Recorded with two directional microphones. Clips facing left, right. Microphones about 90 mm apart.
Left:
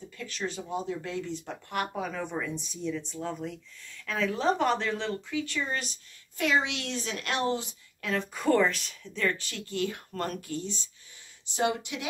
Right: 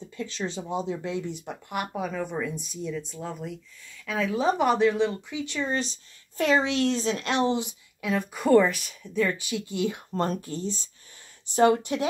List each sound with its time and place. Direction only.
0.2 s speech: 25° right (ahead or behind); by 12.1 s 40° right (ahead or behind)